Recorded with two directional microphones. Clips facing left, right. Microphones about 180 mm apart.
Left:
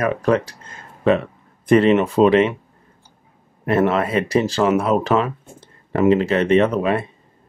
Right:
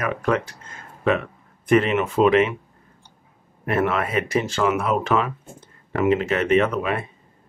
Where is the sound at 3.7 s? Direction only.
35° left (ahead or behind).